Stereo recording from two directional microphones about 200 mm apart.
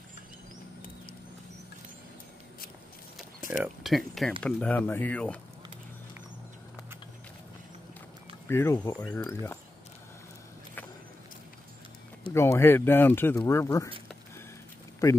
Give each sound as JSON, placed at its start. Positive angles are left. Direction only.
{"t": 3.6, "sound": "speech", "side_deg": 0}
{"t": 8.5, "sound": "speech", "side_deg": 10}
{"t": 12.4, "sound": "speech", "side_deg": 15}
{"t": 15.0, "sound": "speech", "side_deg": 15}